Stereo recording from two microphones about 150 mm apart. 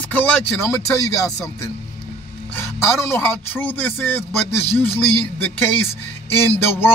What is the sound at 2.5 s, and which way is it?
A man's voice, 15° left (ahead or behind).